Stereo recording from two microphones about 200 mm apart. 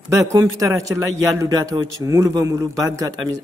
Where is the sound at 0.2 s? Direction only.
15° right (ahead or behind).